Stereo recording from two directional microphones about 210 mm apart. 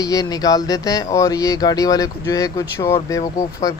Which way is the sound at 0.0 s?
15° left (ahead or behind).